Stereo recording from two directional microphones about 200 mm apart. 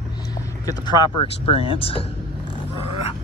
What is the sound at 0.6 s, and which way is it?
A man's voice, 20° left (ahead or behind).